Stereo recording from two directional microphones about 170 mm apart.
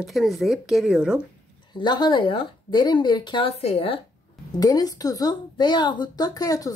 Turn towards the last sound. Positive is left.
turn(degrees=20)  # may be behind; listen again after turning